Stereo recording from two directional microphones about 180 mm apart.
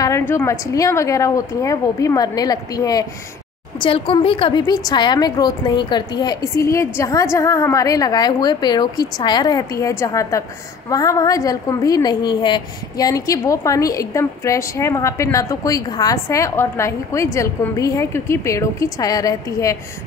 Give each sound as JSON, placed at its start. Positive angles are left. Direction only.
{"t": 0.0, "sound": "a woman's voice", "side_deg": 15}